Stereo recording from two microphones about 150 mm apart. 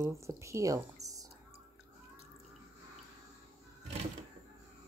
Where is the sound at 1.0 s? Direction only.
25° right (ahead or behind).